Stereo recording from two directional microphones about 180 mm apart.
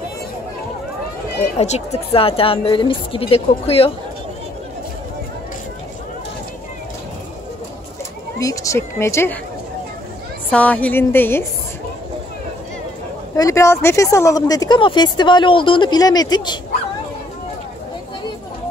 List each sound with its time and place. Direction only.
1.6 s a woman's voice: 35° left (ahead or behind)
8.4 s a woman's voice: 20° left (ahead or behind)
10.5 s a woman's voice: 10° left (ahead or behind)
13.4 s speech: 15° left (ahead or behind)